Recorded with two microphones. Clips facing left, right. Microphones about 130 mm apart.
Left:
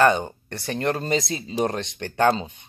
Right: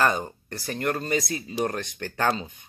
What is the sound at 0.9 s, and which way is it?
Speech, 30° left (ahead or behind).